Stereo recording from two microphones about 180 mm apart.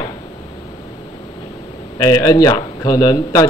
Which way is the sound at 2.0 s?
20° left (ahead or behind).